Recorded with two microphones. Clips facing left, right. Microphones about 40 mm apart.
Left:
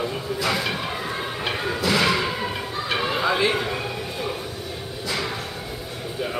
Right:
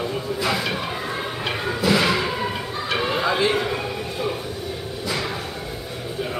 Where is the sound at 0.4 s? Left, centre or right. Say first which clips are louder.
Even; centre.